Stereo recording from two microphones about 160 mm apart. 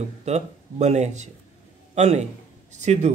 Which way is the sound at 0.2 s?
45° right (ahead or behind).